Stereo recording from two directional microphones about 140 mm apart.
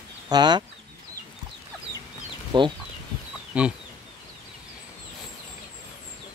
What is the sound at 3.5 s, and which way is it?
Chicken, 10° right (ahead or behind).